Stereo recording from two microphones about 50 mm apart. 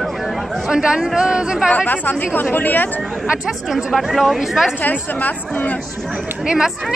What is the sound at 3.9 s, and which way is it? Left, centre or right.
Speech, centre.